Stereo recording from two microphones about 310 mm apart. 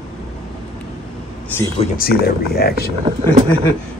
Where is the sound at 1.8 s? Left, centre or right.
Left.